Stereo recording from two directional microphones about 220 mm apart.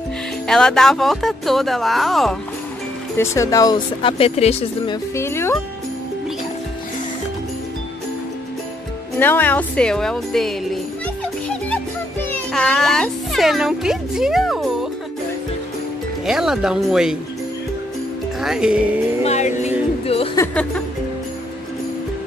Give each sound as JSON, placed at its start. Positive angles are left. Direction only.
{"t": 0.5, "sound": "speech", "side_deg": 5}
{"t": 3.2, "sound": "speech", "side_deg": 15}
{"t": 5.1, "sound": "speech", "side_deg": 10}
{"t": 9.2, "sound": "speech", "side_deg": 10}
{"t": 11.4, "sound": "music", "side_deg": 5}
{"t": 16.3, "sound": "speech", "side_deg": -5}
{"t": 18.4, "sound": "speech", "side_deg": -5}
{"t": 19.2, "sound": "music", "side_deg": 30}
{"t": 20.3, "sound": "speech", "side_deg": 5}